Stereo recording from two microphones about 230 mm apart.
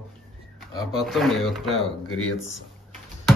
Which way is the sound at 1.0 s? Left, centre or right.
Centre.